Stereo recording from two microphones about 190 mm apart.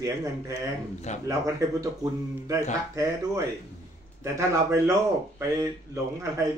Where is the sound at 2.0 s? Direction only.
15° right (ahead or behind).